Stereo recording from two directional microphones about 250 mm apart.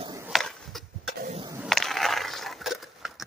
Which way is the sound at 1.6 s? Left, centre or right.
Centre.